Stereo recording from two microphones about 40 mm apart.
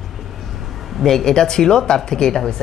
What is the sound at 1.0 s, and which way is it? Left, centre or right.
Speech, centre.